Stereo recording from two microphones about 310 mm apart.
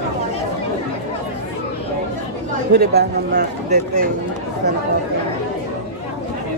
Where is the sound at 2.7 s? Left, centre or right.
Right.